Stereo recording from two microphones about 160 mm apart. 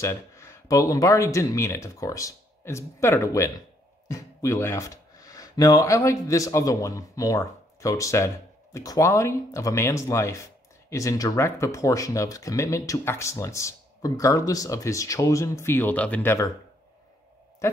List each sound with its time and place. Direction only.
0.0 s speech: 20° left (ahead or behind)